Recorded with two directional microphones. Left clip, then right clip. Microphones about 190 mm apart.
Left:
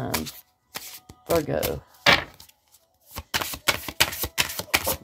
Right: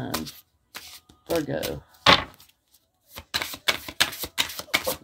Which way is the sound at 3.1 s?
25° left (ahead or behind).